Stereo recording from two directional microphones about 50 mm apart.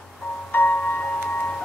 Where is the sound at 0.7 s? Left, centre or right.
Left.